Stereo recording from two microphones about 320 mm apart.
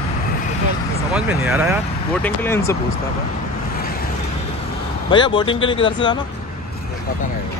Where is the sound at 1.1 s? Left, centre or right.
Centre.